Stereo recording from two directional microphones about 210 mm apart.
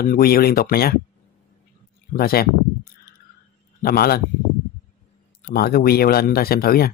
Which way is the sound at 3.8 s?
45° left (ahead or behind).